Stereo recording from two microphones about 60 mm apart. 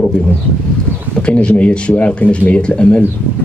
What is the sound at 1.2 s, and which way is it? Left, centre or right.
Speech, centre.